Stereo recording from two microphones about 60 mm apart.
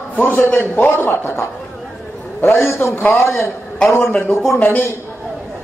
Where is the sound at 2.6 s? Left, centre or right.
Left.